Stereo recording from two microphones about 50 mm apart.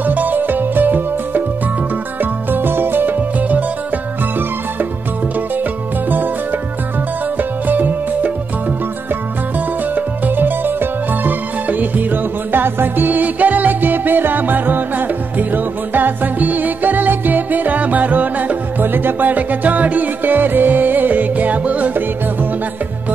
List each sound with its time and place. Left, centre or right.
0.0 s music: right
2.5 s music: right
3.2 s music: right
7.3 s music: right
9.9 s music: right